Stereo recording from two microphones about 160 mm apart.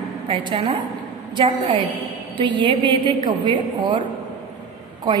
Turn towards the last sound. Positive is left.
turn(degrees=-30)  # may be behind; listen again after turning